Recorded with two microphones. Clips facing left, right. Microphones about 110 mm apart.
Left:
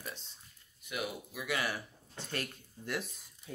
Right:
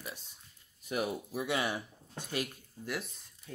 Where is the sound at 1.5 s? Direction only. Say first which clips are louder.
Right 1 dB; 20° right (ahead or behind).